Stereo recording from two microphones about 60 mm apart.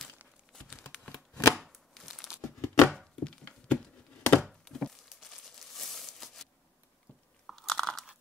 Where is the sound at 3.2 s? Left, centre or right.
Centre.